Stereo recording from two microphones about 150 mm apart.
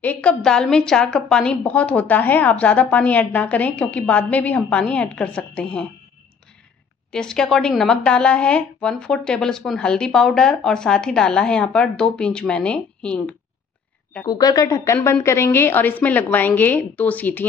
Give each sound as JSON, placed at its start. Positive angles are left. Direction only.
{"t": 0.0, "sound": "a woman's voice", "side_deg": 10}
{"t": 7.1, "sound": "speech", "side_deg": 5}
{"t": 14.2, "sound": "a woman's voice", "side_deg": 25}